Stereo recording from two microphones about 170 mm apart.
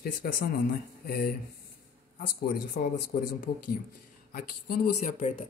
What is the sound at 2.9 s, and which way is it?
Speech, 60° left (ahead or behind).